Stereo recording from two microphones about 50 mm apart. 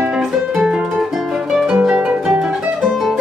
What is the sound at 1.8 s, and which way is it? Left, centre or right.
Harp, centre.